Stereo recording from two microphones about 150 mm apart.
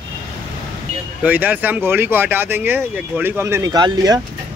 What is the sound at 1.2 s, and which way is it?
Speech, 10° right (ahead or behind).